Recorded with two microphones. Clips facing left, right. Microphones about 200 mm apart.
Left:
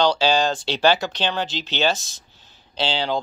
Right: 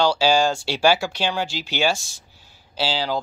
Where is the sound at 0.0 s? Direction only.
10° right (ahead or behind).